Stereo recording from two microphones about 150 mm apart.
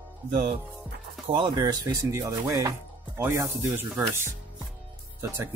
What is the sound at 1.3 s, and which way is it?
Speech, 30° right (ahead or behind).